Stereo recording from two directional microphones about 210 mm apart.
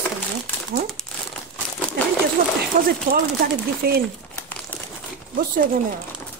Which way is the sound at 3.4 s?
45° right (ahead or behind).